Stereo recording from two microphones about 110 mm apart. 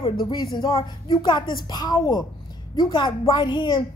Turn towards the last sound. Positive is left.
turn(degrees=45)  # may be behind; listen again after turning